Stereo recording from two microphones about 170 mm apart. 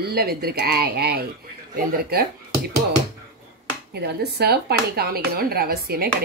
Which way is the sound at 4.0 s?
70° right (ahead or behind).